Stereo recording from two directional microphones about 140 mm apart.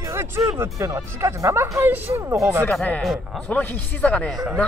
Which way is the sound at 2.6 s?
10° left (ahead or behind).